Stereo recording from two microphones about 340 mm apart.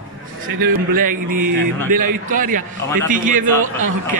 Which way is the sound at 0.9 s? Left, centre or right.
Right.